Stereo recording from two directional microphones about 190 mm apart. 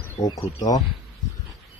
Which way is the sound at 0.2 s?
20° left (ahead or behind).